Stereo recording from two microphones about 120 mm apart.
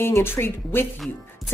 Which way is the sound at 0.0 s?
20° left (ahead or behind).